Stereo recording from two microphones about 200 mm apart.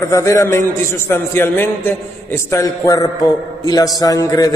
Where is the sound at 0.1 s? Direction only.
15° left (ahead or behind).